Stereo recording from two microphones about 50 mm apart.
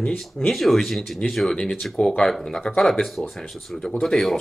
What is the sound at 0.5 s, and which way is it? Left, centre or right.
Speech, centre.